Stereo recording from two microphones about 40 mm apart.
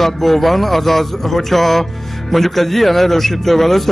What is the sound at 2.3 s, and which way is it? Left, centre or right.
Speech, centre.